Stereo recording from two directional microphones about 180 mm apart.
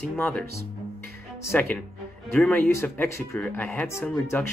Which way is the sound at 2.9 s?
15° left (ahead or behind).